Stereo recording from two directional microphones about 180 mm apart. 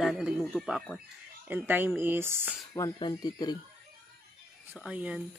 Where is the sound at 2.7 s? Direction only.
25° left (ahead or behind).